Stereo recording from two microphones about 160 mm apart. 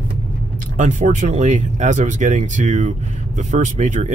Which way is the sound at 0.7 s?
50° right (ahead or behind).